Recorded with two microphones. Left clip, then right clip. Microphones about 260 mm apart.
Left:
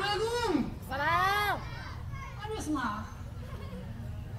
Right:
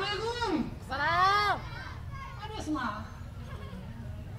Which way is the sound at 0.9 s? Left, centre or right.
Right.